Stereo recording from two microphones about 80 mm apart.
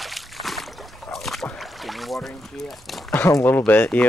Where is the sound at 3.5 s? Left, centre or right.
Left.